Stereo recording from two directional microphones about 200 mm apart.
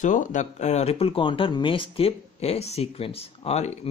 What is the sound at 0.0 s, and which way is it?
Speech, 40° left (ahead or behind).